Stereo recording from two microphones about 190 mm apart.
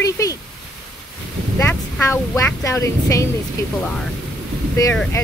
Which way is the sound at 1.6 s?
10° left (ahead or behind).